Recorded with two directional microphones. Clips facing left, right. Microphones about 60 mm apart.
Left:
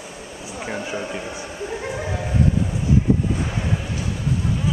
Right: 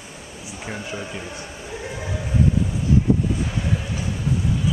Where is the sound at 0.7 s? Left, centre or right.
Centre.